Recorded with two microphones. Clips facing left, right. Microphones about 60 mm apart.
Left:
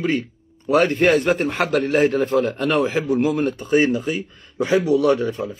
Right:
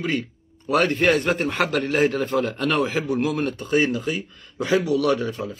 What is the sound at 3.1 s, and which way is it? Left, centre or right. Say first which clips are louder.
Speech: left 5 dB; centre.